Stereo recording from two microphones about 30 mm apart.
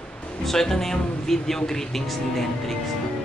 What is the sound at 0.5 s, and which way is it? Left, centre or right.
Speech, centre.